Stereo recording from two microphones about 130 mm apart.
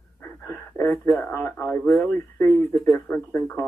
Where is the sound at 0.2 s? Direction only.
20° left (ahead or behind).